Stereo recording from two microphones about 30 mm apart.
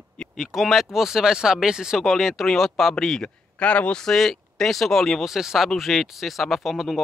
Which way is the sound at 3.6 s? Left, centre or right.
Left.